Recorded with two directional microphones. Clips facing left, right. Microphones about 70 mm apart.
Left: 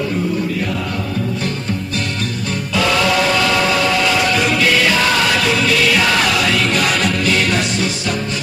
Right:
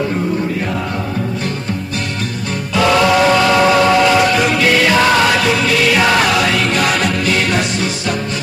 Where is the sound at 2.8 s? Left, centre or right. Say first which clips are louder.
Right 4 dB; right.